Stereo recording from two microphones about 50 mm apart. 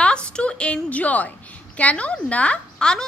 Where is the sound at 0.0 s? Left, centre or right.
Left.